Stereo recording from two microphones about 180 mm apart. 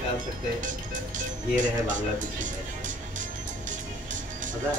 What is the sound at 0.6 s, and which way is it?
Speech, 45° right (ahead or behind).